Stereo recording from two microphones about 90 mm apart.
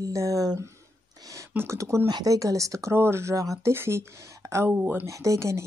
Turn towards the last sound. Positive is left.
turn(degrees=-35)  # may be behind; listen again after turning